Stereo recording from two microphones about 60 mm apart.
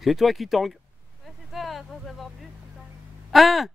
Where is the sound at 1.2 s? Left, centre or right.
Centre.